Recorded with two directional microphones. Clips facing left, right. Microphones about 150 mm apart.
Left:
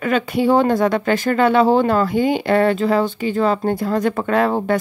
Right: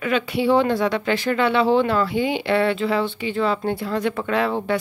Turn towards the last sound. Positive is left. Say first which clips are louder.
# left 4 dB
turn(degrees=45)  # may be behind; listen again after turning